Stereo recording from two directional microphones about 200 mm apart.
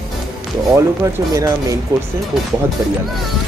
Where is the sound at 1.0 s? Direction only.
15° right (ahead or behind).